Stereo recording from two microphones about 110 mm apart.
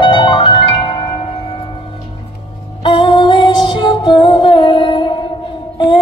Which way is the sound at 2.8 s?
50° left (ahead or behind).